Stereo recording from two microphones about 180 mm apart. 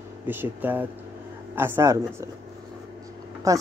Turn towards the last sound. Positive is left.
turn(degrees=-20)  # may be behind; listen again after turning